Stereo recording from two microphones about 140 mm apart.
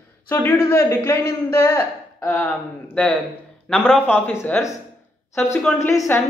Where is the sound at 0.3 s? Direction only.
15° left (ahead or behind).